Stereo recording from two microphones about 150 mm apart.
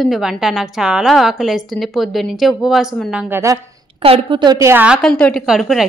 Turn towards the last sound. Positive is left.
turn(degrees=-5)  # may be behind; listen again after turning